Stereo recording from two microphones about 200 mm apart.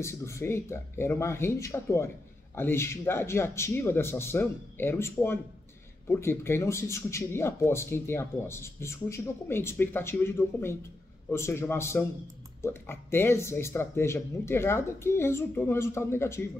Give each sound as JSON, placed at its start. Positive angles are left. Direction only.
{"t": 0.0, "sound": "a man's voice", "side_deg": 15}